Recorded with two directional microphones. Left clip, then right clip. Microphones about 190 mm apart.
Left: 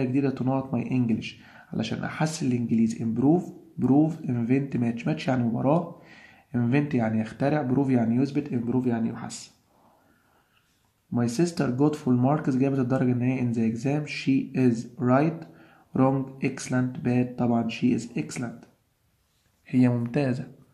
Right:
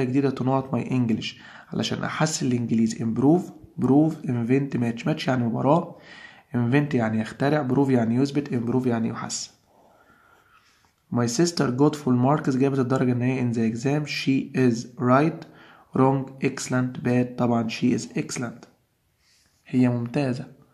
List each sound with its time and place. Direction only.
0.0 s speech: 20° right (ahead or behind)
11.1 s speech: 20° right (ahead or behind)
19.6 s speech: 5° right (ahead or behind)